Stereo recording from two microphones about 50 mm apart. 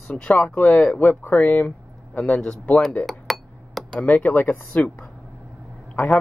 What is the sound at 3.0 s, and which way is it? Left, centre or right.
Glass, centre.